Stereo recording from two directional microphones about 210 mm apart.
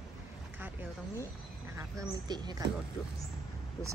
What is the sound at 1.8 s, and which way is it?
Speech, 15° right (ahead or behind).